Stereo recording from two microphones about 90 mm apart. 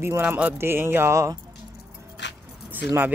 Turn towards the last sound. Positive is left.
turn(degrees=-20)  # may be behind; listen again after turning